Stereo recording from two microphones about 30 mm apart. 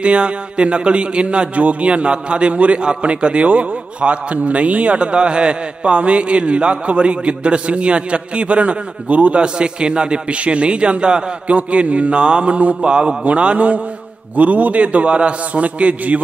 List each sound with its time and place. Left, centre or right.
0.0 s a man's voice: right
1.5 s a man's voice: right
4.9 s a man's voice: right
9.4 s a man's voice: right
11.4 s a man's voice: right
12.8 s a man's voice: right
13.2 s a man's voice: right
14.3 s a man's voice: right
15.6 s a man's voice: right